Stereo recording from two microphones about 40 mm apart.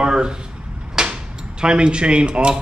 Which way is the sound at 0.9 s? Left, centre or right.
Centre.